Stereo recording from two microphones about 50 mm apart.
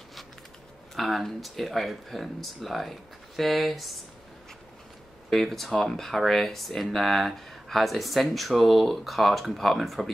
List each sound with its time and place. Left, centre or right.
0.9 s speech: centre
5.3 s speech: centre